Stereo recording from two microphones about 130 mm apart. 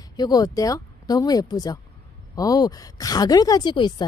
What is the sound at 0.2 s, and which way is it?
A woman's voice, 30° left (ahead or behind).